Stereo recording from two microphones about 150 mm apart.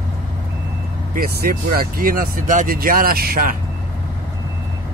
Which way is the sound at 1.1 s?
85° right.